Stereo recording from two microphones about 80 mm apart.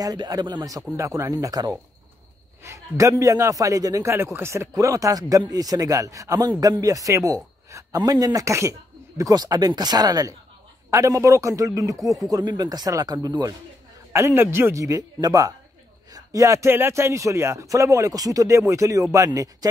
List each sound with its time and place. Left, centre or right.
0.0 s a man's voice: right
0.9 s speech: right
1.3 s a man's voice: right
10.9 s a man's voice: right
12.4 s a man's voice: right
14.1 s speech: right
16.7 s a man's voice: right